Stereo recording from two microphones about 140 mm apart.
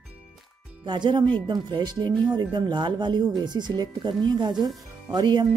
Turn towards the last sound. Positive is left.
turn(degrees=-30)  # may be behind; listen again after turning